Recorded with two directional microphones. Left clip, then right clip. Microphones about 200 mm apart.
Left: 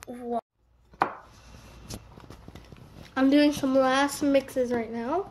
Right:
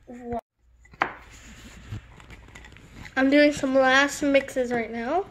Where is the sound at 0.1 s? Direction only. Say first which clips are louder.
Left 1 dB; 5° left (ahead or behind).